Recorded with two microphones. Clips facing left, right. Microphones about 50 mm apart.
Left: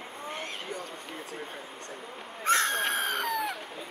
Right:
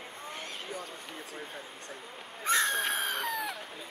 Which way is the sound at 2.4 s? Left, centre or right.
Left.